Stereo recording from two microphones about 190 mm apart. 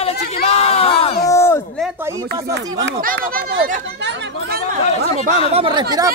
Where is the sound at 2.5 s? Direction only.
55° right (ahead or behind).